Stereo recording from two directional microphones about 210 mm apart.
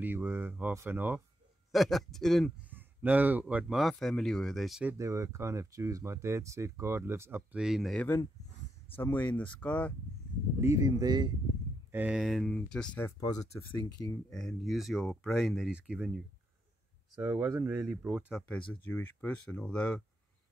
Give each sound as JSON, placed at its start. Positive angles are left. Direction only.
{"t": 0.0, "sound": "speech", "side_deg": -10}
{"t": 4.9, "sound": "speech", "side_deg": -15}
{"t": 10.6, "sound": "speech", "side_deg": -15}
{"t": 11.9, "sound": "speech", "side_deg": -5}
{"t": 13.2, "sound": "speech", "side_deg": 15}
{"t": 14.3, "sound": "speech", "side_deg": 0}
{"t": 17.2, "sound": "speech", "side_deg": -10}